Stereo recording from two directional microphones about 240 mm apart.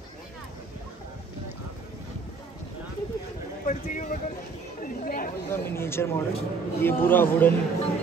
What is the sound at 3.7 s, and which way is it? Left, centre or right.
Speech, left.